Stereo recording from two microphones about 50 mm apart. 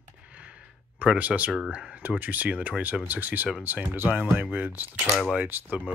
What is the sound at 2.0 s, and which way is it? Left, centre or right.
Speech, right.